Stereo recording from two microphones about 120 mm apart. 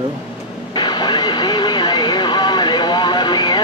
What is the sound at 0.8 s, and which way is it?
Vehicle, 40° left (ahead or behind).